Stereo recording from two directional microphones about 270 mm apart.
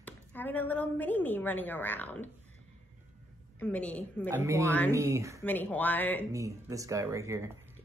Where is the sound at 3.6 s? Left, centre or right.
Centre.